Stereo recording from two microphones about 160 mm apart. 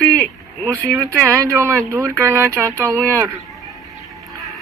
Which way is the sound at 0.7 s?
20° right (ahead or behind).